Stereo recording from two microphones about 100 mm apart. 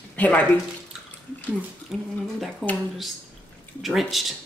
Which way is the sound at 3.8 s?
Centre (ahead or behind).